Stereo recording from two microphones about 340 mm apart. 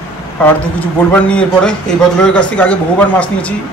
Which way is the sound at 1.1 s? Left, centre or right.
Centre.